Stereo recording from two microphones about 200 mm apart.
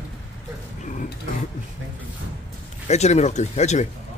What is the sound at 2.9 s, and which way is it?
Speech, 35° left (ahead or behind).